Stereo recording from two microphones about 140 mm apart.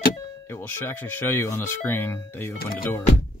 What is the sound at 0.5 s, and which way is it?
Speech, 15° left (ahead or behind).